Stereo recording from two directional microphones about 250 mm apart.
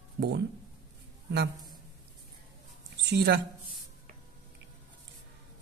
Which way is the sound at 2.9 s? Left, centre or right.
Right.